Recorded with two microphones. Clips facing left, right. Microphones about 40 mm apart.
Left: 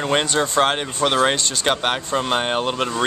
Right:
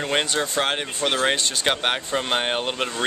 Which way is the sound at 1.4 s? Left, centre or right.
Centre.